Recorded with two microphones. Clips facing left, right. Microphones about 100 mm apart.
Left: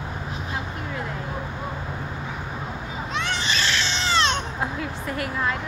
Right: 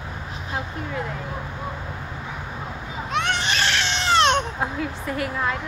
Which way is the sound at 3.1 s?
65° right (ahead or behind).